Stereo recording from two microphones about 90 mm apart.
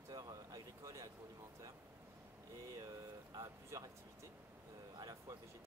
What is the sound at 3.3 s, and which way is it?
Speech, 35° right (ahead or behind).